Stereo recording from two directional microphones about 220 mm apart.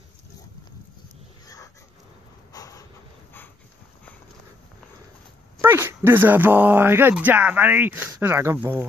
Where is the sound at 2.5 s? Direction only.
15° left (ahead or behind).